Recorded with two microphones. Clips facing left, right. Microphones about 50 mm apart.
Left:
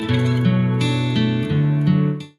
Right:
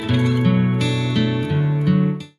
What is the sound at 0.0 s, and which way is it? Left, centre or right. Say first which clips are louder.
Music: right 1 dB; centre.